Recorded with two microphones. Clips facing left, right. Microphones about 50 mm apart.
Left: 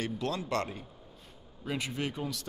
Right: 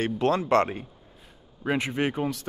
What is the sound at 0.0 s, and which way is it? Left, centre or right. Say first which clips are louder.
Speech: right 9 dB; right.